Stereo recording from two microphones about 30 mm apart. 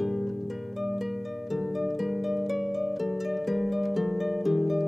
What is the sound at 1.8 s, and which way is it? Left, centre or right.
Harp, centre.